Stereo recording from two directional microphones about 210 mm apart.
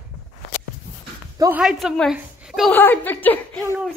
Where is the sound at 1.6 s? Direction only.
Centre (ahead or behind).